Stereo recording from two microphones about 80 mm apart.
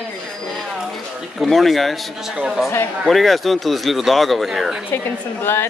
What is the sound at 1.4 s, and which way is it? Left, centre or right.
Speech, centre.